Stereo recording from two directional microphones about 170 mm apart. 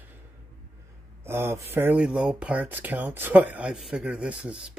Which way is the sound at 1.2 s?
15° right (ahead or behind).